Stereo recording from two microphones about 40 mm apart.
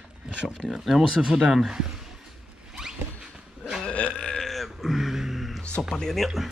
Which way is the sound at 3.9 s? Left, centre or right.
Left.